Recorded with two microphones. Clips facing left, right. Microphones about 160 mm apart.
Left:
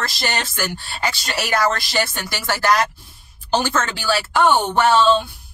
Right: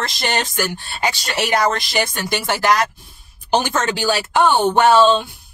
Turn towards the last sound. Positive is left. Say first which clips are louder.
# right 3 dB
turn(degrees=-15)  # may be behind; listen again after turning